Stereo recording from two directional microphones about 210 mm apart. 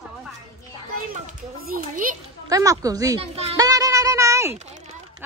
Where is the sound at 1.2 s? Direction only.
40° right (ahead or behind).